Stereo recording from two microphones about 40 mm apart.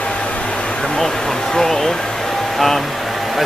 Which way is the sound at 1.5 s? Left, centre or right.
Centre.